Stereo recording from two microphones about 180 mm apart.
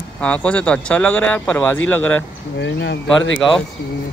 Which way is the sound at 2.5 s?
80° left.